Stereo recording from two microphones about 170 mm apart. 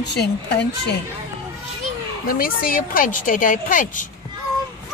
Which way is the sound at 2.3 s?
55° left (ahead or behind).